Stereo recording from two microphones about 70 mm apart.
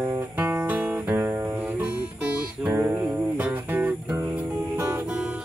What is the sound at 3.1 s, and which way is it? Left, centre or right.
Music, right.